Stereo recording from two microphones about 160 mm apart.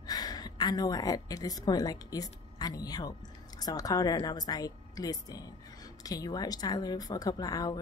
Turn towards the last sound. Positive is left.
turn(degrees=25)  # may be behind; listen again after turning